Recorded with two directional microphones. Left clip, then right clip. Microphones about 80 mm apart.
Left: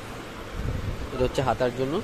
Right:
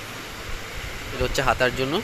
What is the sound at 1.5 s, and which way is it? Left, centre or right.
Speech, centre.